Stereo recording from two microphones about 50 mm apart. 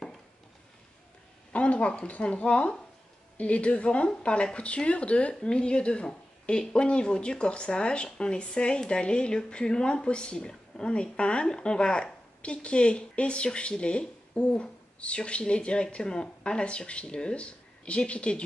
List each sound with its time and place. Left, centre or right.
1.5 s a woman's voice: left